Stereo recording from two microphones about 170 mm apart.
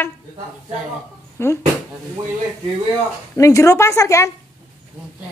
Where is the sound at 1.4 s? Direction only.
15° left (ahead or behind).